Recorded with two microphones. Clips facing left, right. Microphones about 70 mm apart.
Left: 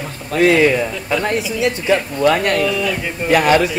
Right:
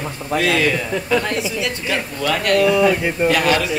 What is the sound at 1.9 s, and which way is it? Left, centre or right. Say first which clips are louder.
Speech: left 7 dB; left.